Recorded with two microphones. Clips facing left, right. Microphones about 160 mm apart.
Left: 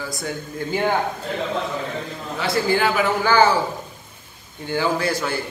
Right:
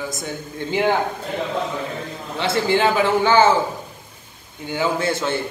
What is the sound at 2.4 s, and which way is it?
A man's voice, 25° right (ahead or behind).